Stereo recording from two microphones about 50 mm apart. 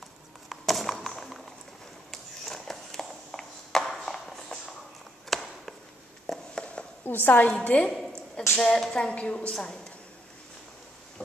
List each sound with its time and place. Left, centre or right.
0.5 s a sound: centre
7.1 s a woman's voice: left
8.5 s a woman's voice: centre
8.9 s a woman's voice: left
9.5 s a woman's voice: centre